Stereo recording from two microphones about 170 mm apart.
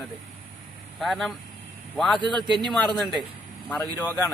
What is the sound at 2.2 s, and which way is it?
Speech, 25° right (ahead or behind).